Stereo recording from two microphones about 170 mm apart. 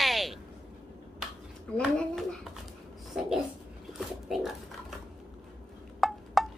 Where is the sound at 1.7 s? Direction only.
5° left (ahead or behind).